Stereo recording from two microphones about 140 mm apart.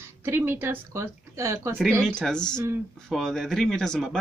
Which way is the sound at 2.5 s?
20° right (ahead or behind).